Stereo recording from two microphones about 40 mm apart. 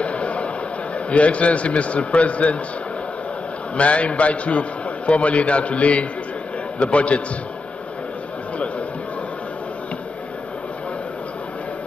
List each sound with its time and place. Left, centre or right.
0.0 s a sound: left
0.9 s a man's voice: left
3.7 s a man's voice: left